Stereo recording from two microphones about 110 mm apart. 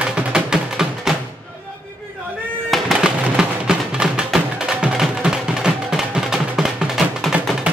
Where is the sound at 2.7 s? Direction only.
5° right (ahead or behind).